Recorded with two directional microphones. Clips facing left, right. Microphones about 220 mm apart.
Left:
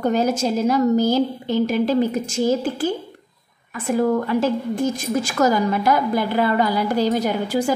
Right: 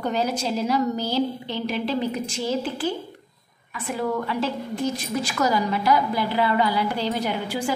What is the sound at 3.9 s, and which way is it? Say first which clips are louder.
A woman's voice: left 7 dB; 45° left (ahead or behind).